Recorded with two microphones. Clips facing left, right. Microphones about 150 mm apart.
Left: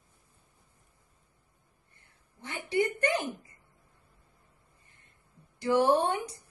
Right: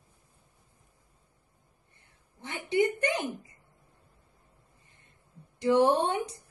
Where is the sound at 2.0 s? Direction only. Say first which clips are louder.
Right 2 dB; 20° right (ahead or behind).